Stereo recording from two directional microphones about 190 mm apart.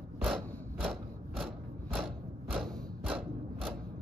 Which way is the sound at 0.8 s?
Centre (ahead or behind).